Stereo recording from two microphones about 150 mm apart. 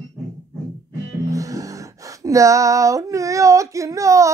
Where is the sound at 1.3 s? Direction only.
20° right (ahead or behind).